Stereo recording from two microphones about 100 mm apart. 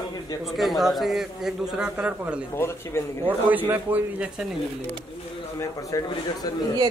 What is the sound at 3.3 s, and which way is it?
A man's voice, 15° right (ahead or behind).